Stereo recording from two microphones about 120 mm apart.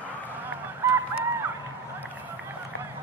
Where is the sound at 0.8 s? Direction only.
15° right (ahead or behind).